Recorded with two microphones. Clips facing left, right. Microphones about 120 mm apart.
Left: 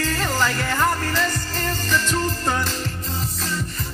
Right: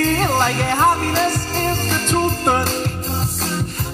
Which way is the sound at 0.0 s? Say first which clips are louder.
Right 6 dB; 40° right (ahead or behind).